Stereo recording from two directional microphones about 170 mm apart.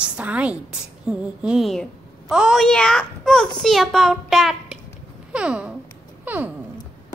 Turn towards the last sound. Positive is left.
turn(degrees=-10)  # may be behind; listen again after turning